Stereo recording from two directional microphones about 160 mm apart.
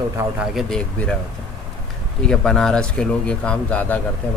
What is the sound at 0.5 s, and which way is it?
Speech, 5° left (ahead or behind).